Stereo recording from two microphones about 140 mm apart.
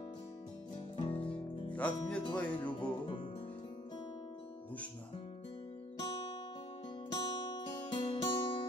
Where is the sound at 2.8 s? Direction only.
35° left (ahead or behind).